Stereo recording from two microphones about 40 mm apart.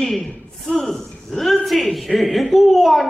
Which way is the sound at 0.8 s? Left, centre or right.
Centre.